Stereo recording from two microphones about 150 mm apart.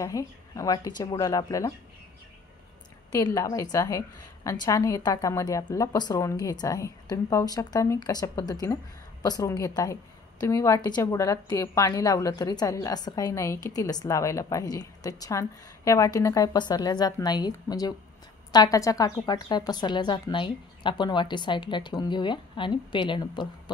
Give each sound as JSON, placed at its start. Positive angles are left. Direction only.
{"t": 0.0, "sound": "a woman's voice", "side_deg": 20}
{"t": 3.3, "sound": "a woman's voice", "side_deg": 20}